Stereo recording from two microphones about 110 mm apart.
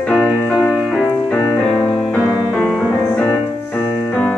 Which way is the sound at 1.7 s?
45° left (ahead or behind).